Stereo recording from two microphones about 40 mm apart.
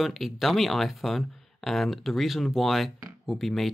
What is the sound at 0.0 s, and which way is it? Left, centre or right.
Speech, centre.